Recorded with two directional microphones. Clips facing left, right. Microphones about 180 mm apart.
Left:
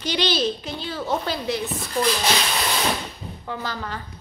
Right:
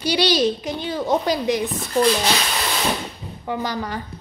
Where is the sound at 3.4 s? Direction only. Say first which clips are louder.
Right 6 dB; 15° right (ahead or behind).